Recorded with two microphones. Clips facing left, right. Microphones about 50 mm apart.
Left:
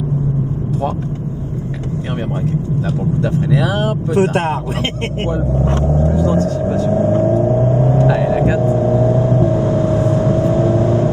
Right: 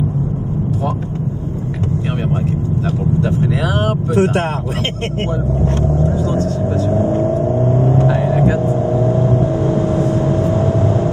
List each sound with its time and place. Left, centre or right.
3.3 s speech: right
4.2 s speech: left
5.9 s speech: left
6.9 s vehicle: left